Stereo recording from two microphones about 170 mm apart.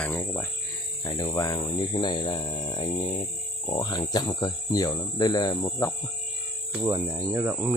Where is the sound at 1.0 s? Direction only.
25° left (ahead or behind).